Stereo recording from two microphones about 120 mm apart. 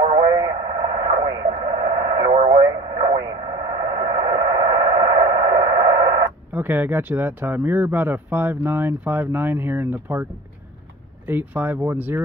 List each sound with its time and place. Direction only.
0.0 s radio: 35° right (ahead or behind)
6.5 s speech: 15° right (ahead or behind)
11.2 s speech: 15° right (ahead or behind)